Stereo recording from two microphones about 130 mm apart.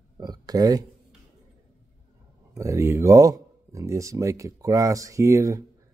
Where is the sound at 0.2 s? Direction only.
30° right (ahead or behind).